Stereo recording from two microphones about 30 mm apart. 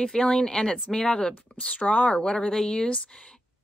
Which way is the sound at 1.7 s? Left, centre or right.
Left.